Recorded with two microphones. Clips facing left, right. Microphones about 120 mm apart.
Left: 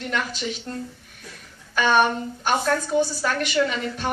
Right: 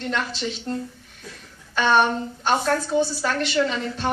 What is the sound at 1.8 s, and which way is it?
Speech, 5° left (ahead or behind).